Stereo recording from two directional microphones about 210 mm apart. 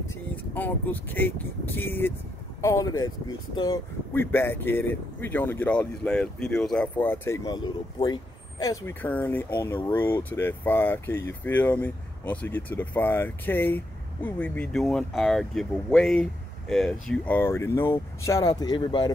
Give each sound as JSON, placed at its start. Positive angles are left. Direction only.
{"t": 0.6, "sound": "speech", "side_deg": 10}